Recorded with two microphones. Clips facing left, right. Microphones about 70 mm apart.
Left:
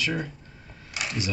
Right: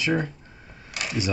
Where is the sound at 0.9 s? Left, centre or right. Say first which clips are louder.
Right 1 dB; centre.